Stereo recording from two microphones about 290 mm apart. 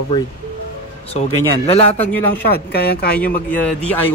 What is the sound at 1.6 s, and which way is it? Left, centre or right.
Speech, left.